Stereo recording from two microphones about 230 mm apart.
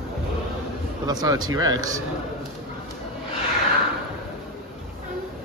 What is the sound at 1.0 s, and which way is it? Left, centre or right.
Speech, centre.